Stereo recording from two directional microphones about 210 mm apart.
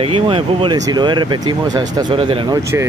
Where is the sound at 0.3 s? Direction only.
25° right (ahead or behind).